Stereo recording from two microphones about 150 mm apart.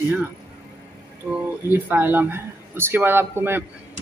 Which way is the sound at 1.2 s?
15° right (ahead or behind).